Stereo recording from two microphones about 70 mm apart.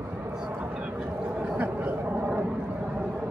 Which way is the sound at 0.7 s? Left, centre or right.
Centre.